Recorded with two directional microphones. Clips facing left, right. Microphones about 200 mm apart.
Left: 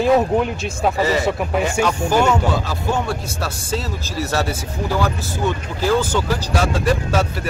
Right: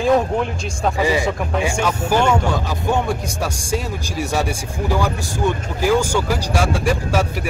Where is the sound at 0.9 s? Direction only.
15° right (ahead or behind).